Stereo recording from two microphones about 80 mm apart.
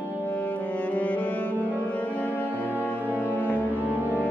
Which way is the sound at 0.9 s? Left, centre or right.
Centre.